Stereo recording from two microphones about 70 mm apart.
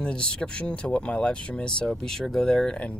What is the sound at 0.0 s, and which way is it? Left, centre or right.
Speech, centre.